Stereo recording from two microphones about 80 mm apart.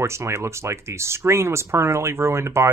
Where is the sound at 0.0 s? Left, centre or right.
Right.